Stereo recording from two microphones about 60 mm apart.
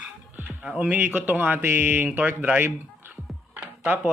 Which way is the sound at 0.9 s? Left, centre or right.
Right.